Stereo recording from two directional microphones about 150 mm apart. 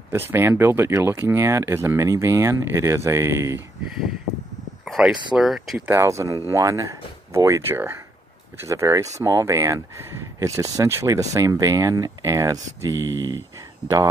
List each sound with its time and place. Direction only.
0.1 s speech: 15° right (ahead or behind)
4.8 s a sound: 5° right (ahead or behind)
5.3 s speech: centre (ahead or behind)
5.9 s speech: 20° right (ahead or behind)
13.0 s speech: 15° left (ahead or behind)